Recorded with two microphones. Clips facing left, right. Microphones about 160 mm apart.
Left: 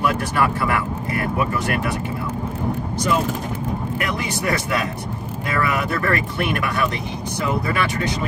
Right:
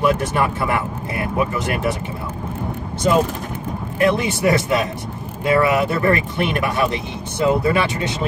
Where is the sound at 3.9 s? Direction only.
25° right (ahead or behind).